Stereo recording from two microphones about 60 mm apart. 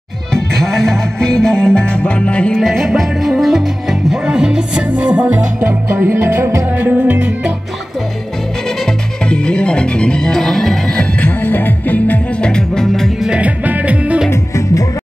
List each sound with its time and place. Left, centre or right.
1.2 s music: centre
2.5 s music: centre
4.1 s music: centre
5.9 s music: right
6.9 s music: right
9.3 s music: centre
11.1 s music: left
12.4 s music: centre
13.3 s music: right
14.3 s music: left